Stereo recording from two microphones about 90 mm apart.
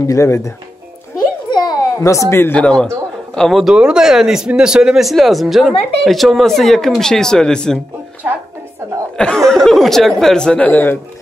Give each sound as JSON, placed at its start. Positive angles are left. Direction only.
{"t": 0.0, "sound": "speech", "side_deg": 35}
{"t": 1.5, "sound": "children playing", "side_deg": 50}
{"t": 2.0, "sound": "speech", "side_deg": 35}
{"t": 2.5, "sound": "speech", "side_deg": 10}
{"t": 3.7, "sound": "speech", "side_deg": -10}
{"t": 8.2, "sound": "a sound", "side_deg": -20}
{"t": 9.1, "sound": "speech", "side_deg": 10}